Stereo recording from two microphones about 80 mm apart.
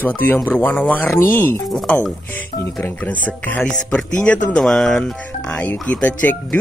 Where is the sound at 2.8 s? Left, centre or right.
Centre.